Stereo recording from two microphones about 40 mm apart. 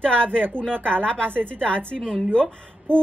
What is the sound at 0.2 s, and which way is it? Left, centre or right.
Speech, left.